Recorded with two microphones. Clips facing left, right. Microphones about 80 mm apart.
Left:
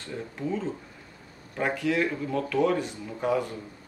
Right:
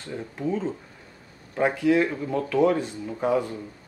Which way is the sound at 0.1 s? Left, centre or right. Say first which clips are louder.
Right 3 dB; centre.